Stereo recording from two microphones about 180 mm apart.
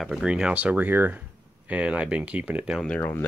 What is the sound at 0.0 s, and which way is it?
Speech, 5° right (ahead or behind).